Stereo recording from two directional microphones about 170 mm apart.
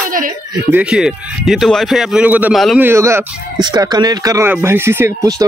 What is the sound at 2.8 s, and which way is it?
A woman's voice, 15° right (ahead or behind).